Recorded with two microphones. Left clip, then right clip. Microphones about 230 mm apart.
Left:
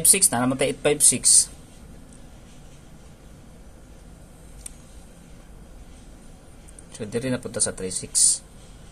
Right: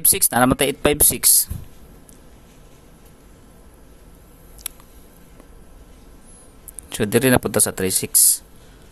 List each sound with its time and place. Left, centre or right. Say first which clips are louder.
0.0 s speech: right 5 dB; right
6.9 s speech: right 11 dB; right